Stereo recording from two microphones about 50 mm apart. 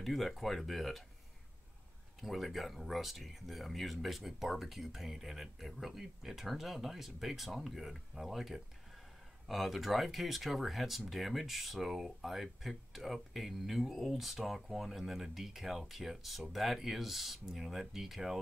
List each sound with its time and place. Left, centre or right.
0.0 s speech: centre
2.2 s speech: centre